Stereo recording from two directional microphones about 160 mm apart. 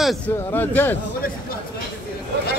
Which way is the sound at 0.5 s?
15° left (ahead or behind).